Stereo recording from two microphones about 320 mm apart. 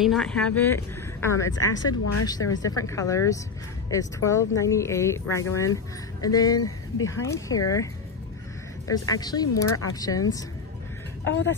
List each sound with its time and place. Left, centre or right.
0.0 s speech: centre
1.5 s speech: left
2.2 s speech: centre
11.2 s speech: left